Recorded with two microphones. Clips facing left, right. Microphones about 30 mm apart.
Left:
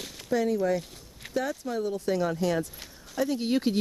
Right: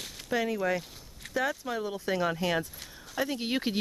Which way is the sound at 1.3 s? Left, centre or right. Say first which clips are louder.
Even; centre.